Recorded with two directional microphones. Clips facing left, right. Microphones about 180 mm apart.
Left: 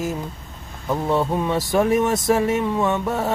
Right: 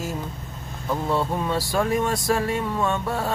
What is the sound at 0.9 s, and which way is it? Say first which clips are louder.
Speech: left 3 dB; 20° left (ahead or behind).